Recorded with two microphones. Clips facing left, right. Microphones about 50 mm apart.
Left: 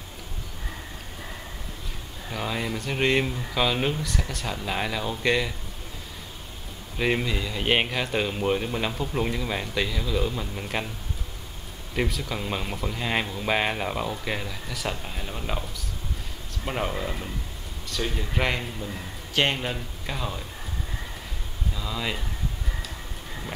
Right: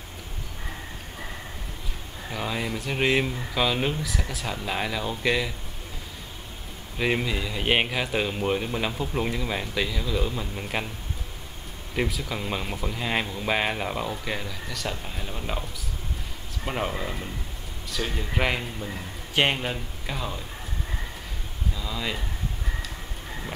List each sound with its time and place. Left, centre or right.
2.3 s speech: centre
7.0 s speech: centre
11.9 s speech: centre
16.6 s speech: centre
19.6 s speech: centre
21.7 s speech: centre